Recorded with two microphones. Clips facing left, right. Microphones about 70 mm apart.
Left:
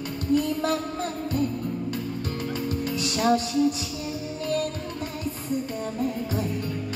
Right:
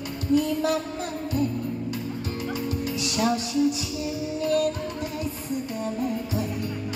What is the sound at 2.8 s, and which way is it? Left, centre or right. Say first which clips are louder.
Music: left 2 dB; left.